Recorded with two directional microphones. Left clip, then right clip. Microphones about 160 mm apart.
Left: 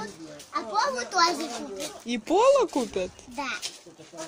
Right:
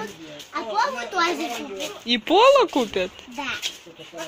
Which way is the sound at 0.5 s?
35° left (ahead or behind).